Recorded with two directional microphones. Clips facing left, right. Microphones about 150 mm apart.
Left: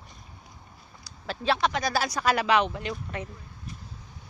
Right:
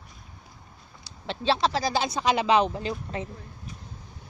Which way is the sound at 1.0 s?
25° right (ahead or behind).